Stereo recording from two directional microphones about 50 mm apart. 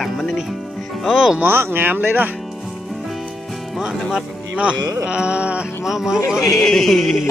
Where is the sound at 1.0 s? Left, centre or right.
Centre.